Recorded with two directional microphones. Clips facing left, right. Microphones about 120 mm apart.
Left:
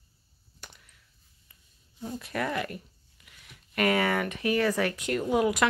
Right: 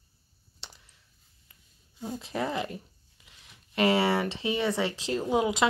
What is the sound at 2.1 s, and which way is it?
Speech, 25° right (ahead or behind).